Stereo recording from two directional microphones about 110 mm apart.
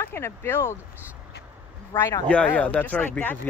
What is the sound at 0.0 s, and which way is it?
Speech, 20° left (ahead or behind).